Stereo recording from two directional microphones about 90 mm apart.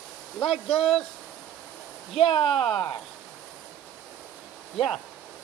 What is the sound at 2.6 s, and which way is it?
Speech, 5° left (ahead or behind).